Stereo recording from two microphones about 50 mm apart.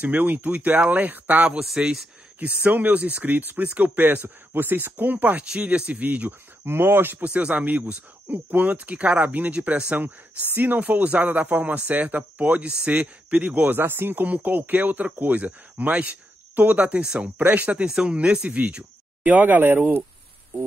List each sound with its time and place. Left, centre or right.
0.0 s speech: right
1.8 s speech: right
2.4 s speech: right
5.6 s speech: right
6.6 s speech: right
7.2 s speech: right
10.5 s speech: right
13.7 s speech: right
14.2 s speech: right
17.4 s speech: right
17.8 s speech: centre; by 19.8 s right